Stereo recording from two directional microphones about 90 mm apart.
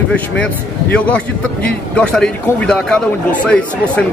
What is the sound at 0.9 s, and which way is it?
Speech, 15° left (ahead or behind).